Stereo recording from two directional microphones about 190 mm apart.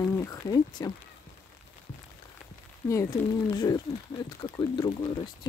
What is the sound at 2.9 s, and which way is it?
Speech, 20° left (ahead or behind).